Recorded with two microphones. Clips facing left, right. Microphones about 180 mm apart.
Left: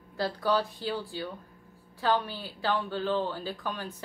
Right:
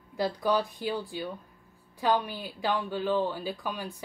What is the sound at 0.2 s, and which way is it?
A woman's voice, 15° right (ahead or behind).